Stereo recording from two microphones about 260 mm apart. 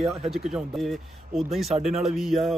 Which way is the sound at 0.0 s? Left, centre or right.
Centre.